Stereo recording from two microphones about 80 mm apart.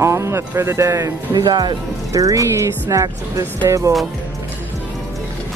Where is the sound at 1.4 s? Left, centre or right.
Right.